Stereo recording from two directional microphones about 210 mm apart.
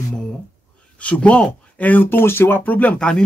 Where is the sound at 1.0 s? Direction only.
5° left (ahead or behind).